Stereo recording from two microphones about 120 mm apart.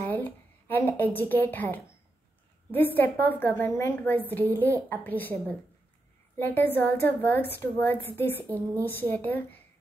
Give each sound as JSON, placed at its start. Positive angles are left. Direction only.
{"t": 0.0, "sound": "a woman's voice", "side_deg": 15}